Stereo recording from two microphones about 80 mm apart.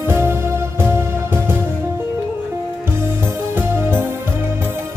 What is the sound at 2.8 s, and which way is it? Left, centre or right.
Music, right.